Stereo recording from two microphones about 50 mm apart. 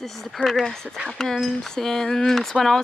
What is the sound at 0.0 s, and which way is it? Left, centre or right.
Speech, centre.